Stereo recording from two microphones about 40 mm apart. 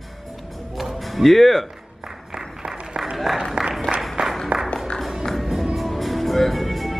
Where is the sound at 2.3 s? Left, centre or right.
Centre.